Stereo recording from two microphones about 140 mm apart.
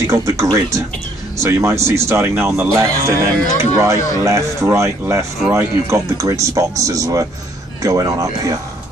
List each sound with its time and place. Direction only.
0.0 s speech: 20° right (ahead or behind)